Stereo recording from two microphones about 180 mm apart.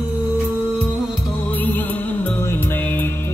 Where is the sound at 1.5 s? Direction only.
10° left (ahead or behind).